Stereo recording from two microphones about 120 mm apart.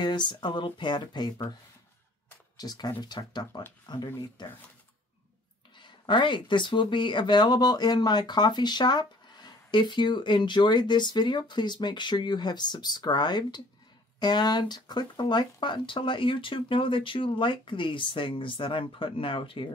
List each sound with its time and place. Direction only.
0.0 s speech: 40° left (ahead or behind)
2.5 s speech: 35° left (ahead or behind)
5.8 s speech: 40° left (ahead or behind)